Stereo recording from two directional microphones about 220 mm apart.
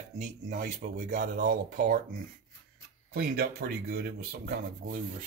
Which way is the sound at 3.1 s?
45° right (ahead or behind).